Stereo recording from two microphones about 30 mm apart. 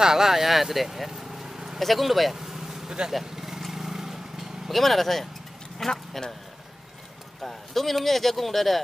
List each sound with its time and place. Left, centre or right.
0.0 s speech: centre
1.8 s speech: centre
2.3 s vehicle: centre
4.7 s speech: centre
5.9 s speech: centre
7.4 s speech: centre